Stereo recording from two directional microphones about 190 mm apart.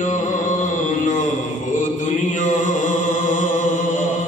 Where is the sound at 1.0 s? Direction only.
40° left (ahead or behind).